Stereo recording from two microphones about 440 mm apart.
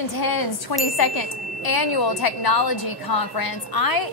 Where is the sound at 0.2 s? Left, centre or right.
Left.